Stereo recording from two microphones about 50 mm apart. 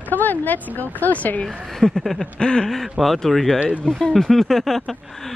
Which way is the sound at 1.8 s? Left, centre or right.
Centre.